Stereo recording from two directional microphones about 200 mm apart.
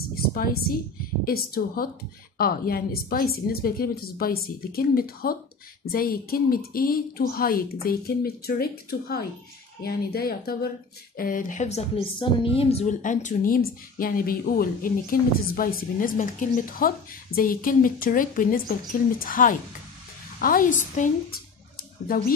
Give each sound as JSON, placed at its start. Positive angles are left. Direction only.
{"t": 0.1, "sound": "a sound", "side_deg": 45}
{"t": 1.2, "sound": "a woman's voice", "side_deg": 45}
{"t": 9.8, "sound": "a woman's voice", "side_deg": 50}